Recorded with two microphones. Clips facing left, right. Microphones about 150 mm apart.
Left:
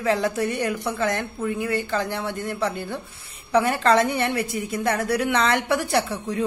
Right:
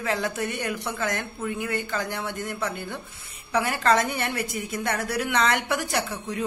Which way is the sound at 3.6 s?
30° left (ahead or behind).